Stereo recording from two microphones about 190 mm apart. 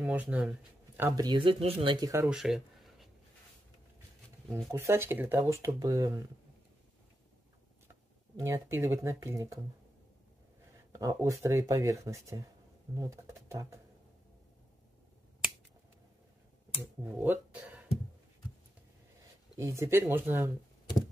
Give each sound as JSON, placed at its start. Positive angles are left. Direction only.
{"t": 0.0, "sound": "speech", "side_deg": -5}
{"t": 2.2, "sound": "a sound", "side_deg": -5}
{"t": 4.6, "sound": "speech", "side_deg": -15}
{"t": 8.4, "sound": "speech", "side_deg": -15}
{"t": 10.9, "sound": "speech", "side_deg": -15}
{"t": 17.0, "sound": "speech", "side_deg": -10}
{"t": 19.5, "sound": "speech", "side_deg": -15}